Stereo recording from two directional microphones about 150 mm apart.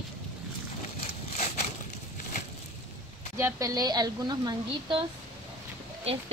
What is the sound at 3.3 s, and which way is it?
A woman's voice, 20° right (ahead or behind).